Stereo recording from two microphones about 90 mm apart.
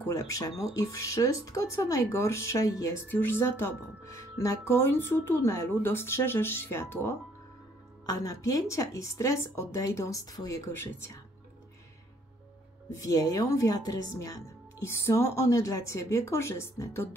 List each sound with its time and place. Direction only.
0.0 s speech: 35° left (ahead or behind)
3.1 s speech: 25° left (ahead or behind); by 10.6 s 40° left (ahead or behind)
10.7 s speech: 30° left (ahead or behind)
12.9 s speech: 40° left (ahead or behind)